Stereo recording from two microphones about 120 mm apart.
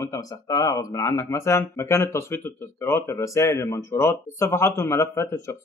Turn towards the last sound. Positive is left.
turn(degrees=25)  # may be behind; listen again after turning